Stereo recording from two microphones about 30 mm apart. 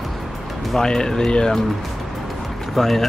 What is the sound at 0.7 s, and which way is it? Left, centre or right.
Speech, left.